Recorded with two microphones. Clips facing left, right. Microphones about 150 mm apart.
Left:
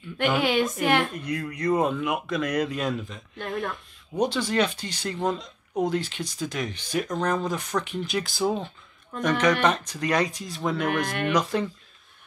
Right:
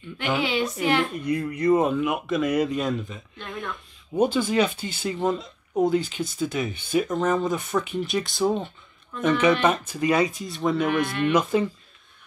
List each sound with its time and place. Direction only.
0.4 s speech: 50° left (ahead or behind)
1.1 s speech: 5° right (ahead or behind)
4.2 s speech: 5° right (ahead or behind)
10.9 s speech: 55° left (ahead or behind)
11.3 s speech: 5° right (ahead or behind)